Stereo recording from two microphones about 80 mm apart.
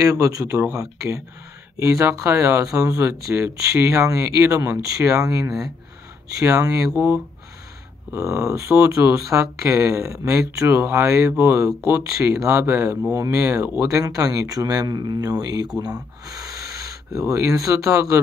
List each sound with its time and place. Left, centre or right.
0.0 s speech: right
8.1 s speech: right